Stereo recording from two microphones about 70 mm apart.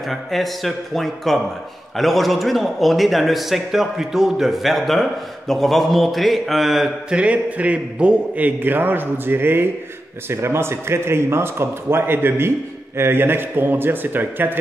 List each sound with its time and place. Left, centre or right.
0.0 s a man's voice: centre
7.1 s a man's voice: centre